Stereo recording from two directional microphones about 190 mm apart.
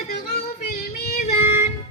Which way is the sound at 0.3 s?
55° left (ahead or behind).